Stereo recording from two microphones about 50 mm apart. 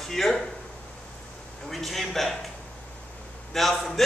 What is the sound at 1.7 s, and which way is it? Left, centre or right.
Speech, centre.